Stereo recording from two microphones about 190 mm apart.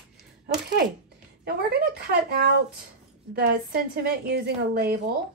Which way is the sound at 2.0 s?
60° right (ahead or behind).